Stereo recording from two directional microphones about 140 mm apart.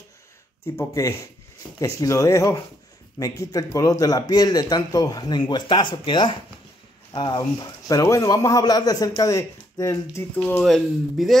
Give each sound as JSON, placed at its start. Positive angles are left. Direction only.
{"t": 0.7, "sound": "a man's voice", "side_deg": 20}
{"t": 10.3, "sound": "speech", "side_deg": 10}
{"t": 10.6, "sound": "speech", "side_deg": 0}